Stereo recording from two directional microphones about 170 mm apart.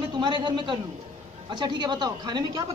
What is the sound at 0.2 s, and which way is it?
A man's voice, 25° right (ahead or behind).